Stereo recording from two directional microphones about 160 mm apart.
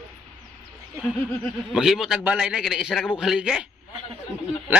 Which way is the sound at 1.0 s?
Centre (ahead or behind).